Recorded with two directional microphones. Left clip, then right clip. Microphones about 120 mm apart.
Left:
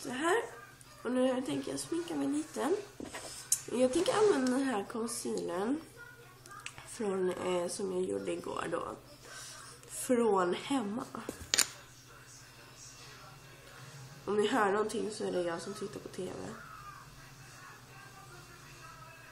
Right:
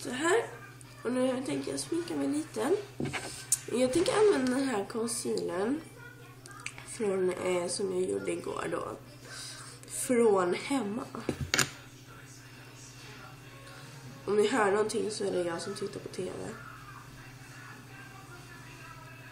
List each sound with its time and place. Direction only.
0.0 s speech: 10° left (ahead or behind)
10.0 s speech: 15° left (ahead or behind)
14.2 s speech: 15° left (ahead or behind)
16.2 s speech: 25° left (ahead or behind)